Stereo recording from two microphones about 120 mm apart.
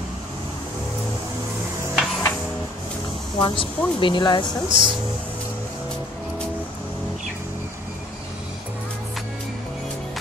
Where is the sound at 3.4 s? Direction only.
45° left (ahead or behind).